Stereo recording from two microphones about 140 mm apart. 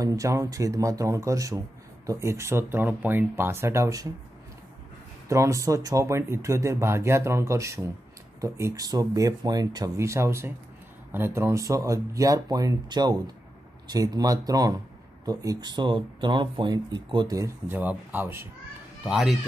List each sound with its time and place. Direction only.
0.0 s speech: 25° right (ahead or behind)
5.3 s speech: 20° right (ahead or behind)
17.4 s speech: 15° right (ahead or behind)
19.0 s speech: centre (ahead or behind)